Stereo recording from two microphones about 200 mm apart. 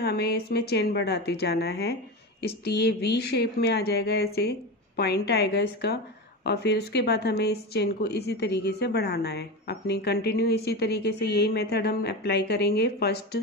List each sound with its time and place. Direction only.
0.0 s speech: 55° left (ahead or behind)